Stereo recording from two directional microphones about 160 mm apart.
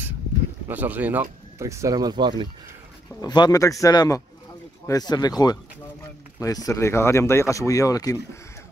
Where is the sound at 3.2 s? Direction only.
25° left (ahead or behind).